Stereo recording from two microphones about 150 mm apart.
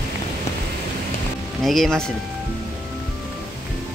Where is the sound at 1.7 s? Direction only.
Centre (ahead or behind).